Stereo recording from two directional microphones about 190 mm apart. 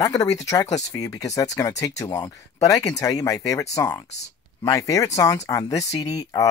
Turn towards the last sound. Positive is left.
turn(degrees=20)  # may be behind; listen again after turning